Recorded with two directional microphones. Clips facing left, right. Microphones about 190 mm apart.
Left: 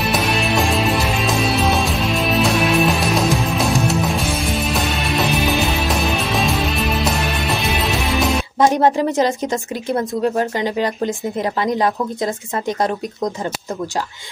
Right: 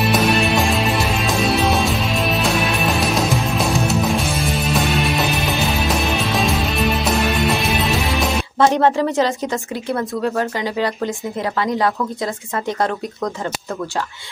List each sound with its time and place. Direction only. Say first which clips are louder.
0.0 s music: right 3 dB; centre (ahead or behind)
8.5 s speech: even; 15° left (ahead or behind)
12.6 s speech: left 1 dB; 15° left (ahead or behind)